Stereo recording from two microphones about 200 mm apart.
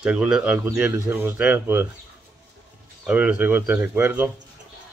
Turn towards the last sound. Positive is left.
turn(degrees=-10)  # may be behind; listen again after turning